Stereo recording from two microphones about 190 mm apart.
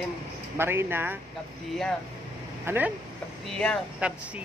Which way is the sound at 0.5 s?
10° right (ahead or behind).